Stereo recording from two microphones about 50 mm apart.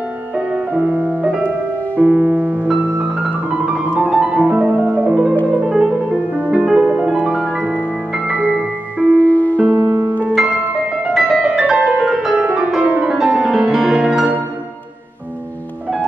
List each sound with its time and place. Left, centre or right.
0.5 s music: right
9.0 s music: left
9.6 s music: right
11.1 s music: centre
12.0 s music: centre
12.4 s music: right
13.1 s music: centre